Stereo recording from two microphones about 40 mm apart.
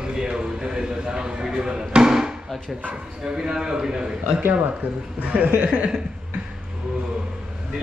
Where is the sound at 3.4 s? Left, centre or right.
Centre.